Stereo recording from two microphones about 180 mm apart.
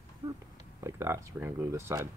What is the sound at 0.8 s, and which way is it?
Speech, 15° right (ahead or behind).